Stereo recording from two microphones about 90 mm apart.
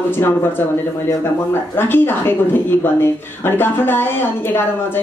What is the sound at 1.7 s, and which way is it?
Speech, 25° left (ahead or behind).